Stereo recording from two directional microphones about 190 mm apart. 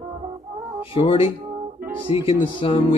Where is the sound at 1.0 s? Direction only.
30° left (ahead or behind).